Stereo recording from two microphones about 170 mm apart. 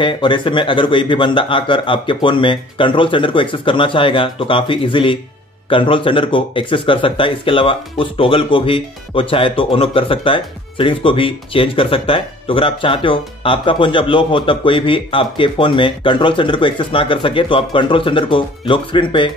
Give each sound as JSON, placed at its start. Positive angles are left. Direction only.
{"t": 0.0, "sound": "speech", "side_deg": 30}